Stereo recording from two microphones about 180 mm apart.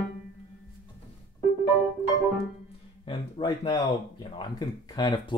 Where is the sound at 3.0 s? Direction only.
30° left (ahead or behind).